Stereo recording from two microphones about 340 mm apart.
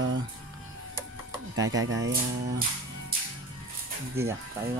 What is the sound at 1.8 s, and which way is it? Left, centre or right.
Speech, right.